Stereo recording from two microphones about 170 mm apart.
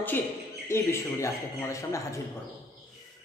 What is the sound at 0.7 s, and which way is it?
A man's voice, 15° left (ahead or behind).